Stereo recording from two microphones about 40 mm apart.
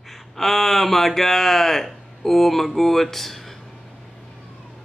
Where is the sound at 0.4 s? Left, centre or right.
Centre.